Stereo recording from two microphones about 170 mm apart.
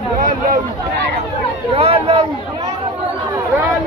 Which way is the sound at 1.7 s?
35° right (ahead or behind).